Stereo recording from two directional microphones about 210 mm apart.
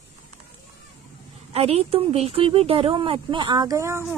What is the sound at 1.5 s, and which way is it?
Speech, 30° right (ahead or behind).